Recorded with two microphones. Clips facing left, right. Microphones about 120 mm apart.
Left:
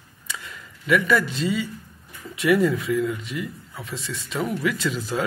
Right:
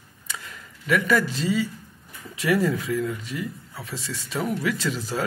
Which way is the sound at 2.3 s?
35° right (ahead or behind).